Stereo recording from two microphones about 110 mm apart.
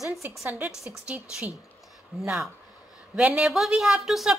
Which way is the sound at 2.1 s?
5° right (ahead or behind).